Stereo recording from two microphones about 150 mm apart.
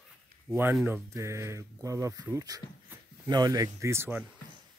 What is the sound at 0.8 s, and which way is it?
Speech, 15° right (ahead or behind).